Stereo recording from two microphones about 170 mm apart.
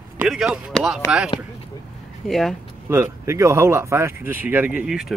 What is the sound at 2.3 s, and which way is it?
Speech, centre (ahead or behind).